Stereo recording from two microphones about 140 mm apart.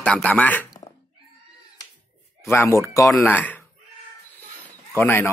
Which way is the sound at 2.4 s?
15° left (ahead or behind).